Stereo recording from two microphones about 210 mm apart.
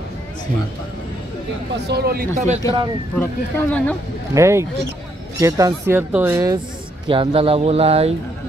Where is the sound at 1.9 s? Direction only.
50° right (ahead or behind).